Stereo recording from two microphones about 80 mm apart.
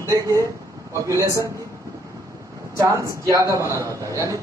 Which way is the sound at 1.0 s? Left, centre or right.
Right.